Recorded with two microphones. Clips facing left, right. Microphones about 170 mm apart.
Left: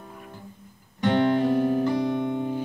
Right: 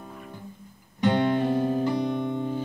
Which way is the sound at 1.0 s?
15° right (ahead or behind).